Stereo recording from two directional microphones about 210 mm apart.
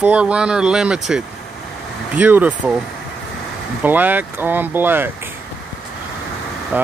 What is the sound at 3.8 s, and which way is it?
Speech, 10° right (ahead or behind).